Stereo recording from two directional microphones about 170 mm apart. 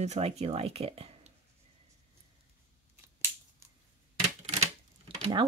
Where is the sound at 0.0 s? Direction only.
40° right (ahead or behind).